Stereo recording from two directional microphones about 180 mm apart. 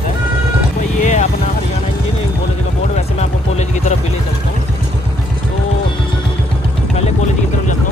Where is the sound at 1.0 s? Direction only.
45° left (ahead or behind).